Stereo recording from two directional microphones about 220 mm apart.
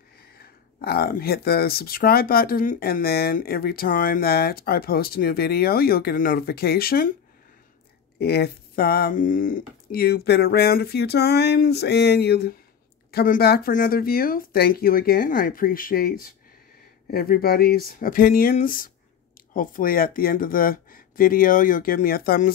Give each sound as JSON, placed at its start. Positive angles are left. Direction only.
{"t": 0.4, "sound": "speech", "side_deg": 45}
{"t": 8.2, "sound": "speech", "side_deg": 45}